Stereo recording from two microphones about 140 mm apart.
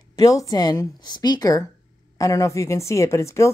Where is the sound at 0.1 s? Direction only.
25° left (ahead or behind).